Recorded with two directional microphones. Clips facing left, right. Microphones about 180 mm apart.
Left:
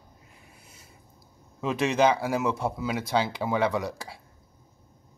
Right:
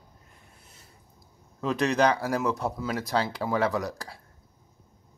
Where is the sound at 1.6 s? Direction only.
Centre (ahead or behind).